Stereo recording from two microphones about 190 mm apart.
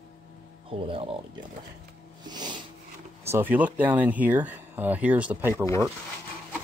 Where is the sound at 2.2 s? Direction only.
25° right (ahead or behind).